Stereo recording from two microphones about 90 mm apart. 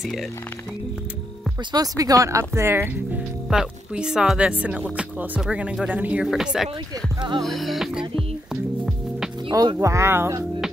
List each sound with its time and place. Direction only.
1.7 s speech: 45° right (ahead or behind); by 2.9 s 30° right (ahead or behind)
3.4 s speech: 10° right (ahead or behind)
6.2 s music: 5° right (ahead or behind)
9.8 s speech: 35° right (ahead or behind)